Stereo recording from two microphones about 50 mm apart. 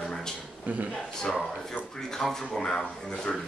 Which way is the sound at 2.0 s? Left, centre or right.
Centre.